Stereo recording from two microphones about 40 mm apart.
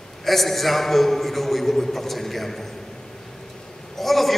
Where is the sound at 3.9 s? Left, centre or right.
Centre.